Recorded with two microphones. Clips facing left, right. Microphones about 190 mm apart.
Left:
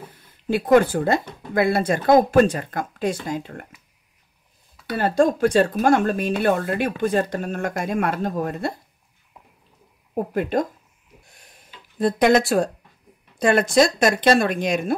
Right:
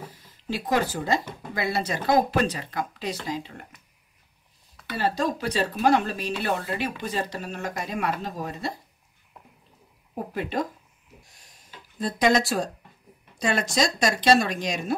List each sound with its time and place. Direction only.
0.1 s speech: 55° left (ahead or behind)
4.9 s speech: 50° left (ahead or behind)
10.3 s speech: 50° left (ahead or behind)
11.2 s a sound: 55° left (ahead or behind)
12.0 s speech: 60° left (ahead or behind)